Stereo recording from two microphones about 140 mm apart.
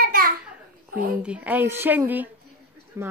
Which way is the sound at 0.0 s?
90° right.